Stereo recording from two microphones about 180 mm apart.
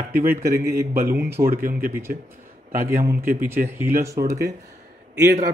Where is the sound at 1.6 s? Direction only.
55° right (ahead or behind).